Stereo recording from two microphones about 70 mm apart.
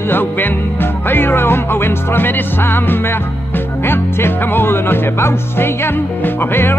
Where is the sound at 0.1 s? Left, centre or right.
Left.